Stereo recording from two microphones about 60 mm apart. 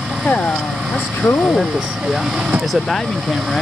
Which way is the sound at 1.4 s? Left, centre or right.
Centre.